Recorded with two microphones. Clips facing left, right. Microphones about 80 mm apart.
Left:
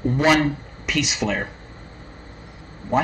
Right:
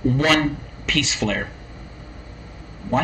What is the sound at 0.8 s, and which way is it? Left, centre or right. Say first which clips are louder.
Speech: even; centre.